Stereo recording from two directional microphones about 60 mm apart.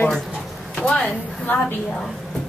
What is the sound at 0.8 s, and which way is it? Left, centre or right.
Speech, centre.